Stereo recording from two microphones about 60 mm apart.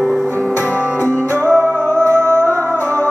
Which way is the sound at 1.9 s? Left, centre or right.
Left.